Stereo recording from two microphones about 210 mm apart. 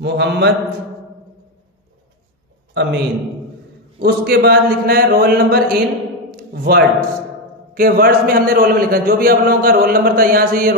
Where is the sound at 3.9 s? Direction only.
50° right (ahead or behind).